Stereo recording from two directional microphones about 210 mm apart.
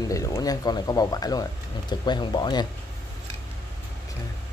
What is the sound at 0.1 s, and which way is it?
Speech, 15° left (ahead or behind).